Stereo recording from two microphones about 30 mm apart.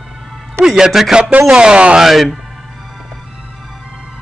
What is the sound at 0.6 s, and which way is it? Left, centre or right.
Speech, centre.